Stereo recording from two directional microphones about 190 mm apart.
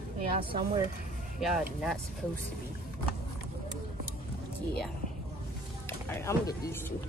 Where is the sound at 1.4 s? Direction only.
Centre (ahead or behind).